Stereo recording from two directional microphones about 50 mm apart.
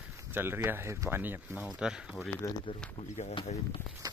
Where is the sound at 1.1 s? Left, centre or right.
Right.